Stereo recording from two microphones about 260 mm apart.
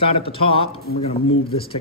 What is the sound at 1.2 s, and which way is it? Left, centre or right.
Speech, left.